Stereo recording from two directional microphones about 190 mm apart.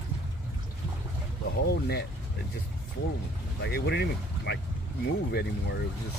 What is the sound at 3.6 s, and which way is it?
Speech, 60° left (ahead or behind).